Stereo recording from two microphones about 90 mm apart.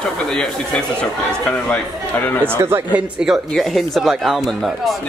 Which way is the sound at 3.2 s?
10° right (ahead or behind).